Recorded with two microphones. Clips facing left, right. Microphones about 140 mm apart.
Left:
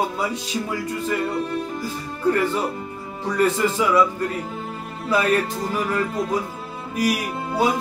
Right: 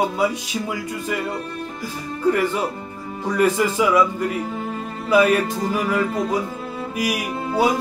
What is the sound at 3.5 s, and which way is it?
Speech, 10° right (ahead or behind).